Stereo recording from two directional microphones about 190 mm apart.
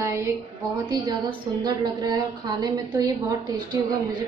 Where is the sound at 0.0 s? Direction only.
15° right (ahead or behind).